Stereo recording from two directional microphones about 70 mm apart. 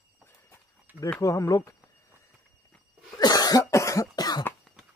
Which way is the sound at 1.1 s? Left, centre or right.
Left.